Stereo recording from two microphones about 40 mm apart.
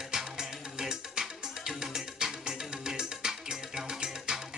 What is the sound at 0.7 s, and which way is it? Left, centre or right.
Music, centre.